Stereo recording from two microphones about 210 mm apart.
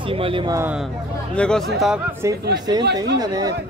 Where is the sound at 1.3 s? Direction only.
5° left (ahead or behind).